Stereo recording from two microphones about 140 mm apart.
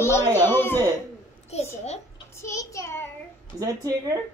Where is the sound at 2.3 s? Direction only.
20° left (ahead or behind).